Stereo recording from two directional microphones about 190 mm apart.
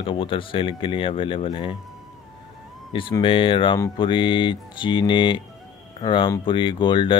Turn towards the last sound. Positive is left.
turn(degrees=25)  # may be behind; listen again after turning